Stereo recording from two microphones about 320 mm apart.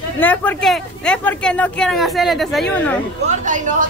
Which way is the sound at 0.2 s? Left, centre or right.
Centre.